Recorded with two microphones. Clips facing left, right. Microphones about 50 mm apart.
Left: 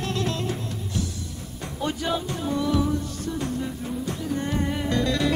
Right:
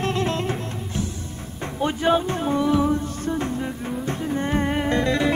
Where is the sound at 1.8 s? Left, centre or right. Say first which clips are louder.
Right 7 dB; right.